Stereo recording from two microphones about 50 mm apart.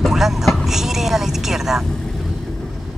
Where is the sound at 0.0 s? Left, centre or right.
Centre.